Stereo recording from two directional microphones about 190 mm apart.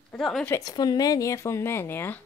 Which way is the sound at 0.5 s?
20° left (ahead or behind).